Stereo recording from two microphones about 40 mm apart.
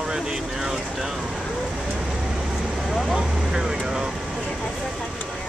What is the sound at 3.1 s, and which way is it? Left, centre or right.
Vehicle, centre.